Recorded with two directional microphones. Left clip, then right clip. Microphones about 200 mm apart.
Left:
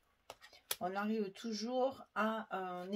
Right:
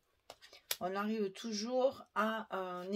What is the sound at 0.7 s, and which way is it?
A woman's voice, 35° right (ahead or behind).